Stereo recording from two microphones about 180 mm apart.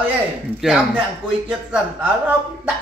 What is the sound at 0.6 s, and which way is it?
A man's voice, 5° right (ahead or behind).